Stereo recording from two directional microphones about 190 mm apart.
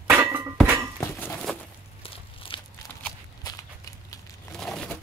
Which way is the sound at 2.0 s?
30° left (ahead or behind).